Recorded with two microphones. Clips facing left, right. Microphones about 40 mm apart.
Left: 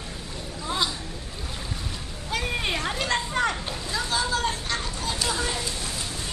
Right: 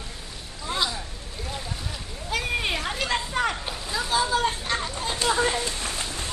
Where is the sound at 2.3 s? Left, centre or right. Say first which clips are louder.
Right 1 dB; centre.